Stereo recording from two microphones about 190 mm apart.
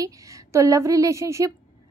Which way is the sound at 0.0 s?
20° right (ahead or behind).